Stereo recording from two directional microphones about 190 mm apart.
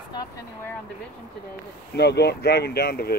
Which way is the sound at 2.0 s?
60° left (ahead or behind).